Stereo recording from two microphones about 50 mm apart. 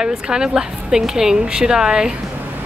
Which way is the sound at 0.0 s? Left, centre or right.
Centre.